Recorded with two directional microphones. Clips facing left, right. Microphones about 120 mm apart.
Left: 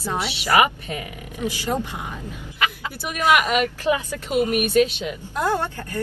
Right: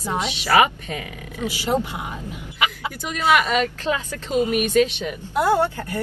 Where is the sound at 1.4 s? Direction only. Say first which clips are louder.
Right 2 dB; 15° right (ahead or behind).